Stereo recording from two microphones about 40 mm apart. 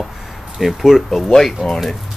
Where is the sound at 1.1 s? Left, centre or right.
Centre.